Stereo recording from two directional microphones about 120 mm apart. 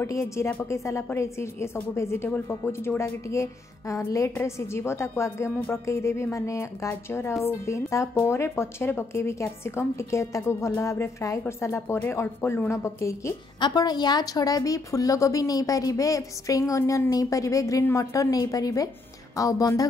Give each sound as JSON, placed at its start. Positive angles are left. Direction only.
{"t": 0.0, "sound": "speech", "side_deg": 25}
{"t": 13.6, "sound": "speech", "side_deg": 35}